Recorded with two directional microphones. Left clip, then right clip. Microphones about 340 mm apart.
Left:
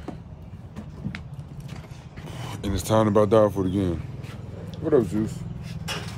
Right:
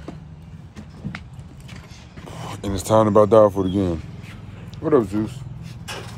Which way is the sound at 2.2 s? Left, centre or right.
Centre.